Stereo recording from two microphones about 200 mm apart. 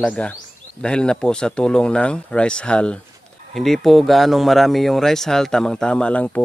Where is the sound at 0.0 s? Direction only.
5° left (ahead or behind).